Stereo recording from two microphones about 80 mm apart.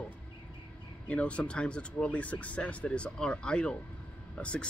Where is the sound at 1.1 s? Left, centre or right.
Centre.